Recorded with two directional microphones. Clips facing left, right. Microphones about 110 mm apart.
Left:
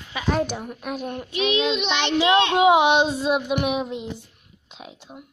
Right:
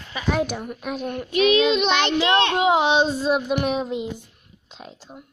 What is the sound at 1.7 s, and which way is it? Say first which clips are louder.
Child singing: right 4 dB; 45° right (ahead or behind).